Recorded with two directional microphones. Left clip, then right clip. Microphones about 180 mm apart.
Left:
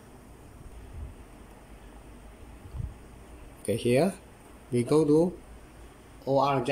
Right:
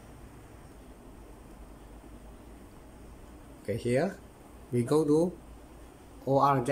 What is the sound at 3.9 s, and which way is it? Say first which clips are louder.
Speech: left 4 dB; 15° left (ahead or behind).